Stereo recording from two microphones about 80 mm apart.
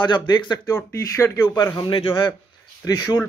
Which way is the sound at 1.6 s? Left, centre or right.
Left.